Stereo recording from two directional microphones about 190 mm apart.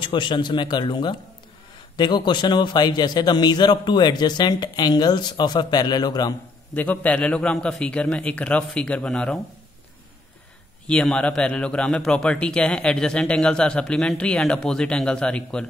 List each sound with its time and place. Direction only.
0.0 s a man's voice: 25° left (ahead or behind)
6.7 s a man's voice: 10° left (ahead or behind)
10.9 s a man's voice: 5° left (ahead or behind)